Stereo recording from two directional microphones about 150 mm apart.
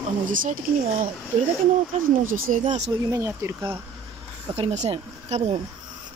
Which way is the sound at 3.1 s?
20° right (ahead or behind).